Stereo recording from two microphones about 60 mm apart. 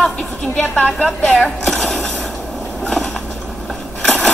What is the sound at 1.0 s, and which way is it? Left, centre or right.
Speech, centre.